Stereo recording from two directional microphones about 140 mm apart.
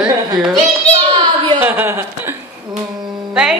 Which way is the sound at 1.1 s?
35° right (ahead or behind).